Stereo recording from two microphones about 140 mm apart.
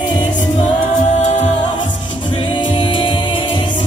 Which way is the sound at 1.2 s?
60° left (ahead or behind).